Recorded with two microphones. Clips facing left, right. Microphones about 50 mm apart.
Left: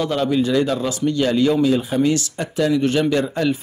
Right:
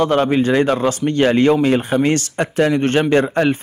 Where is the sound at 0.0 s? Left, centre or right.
Right.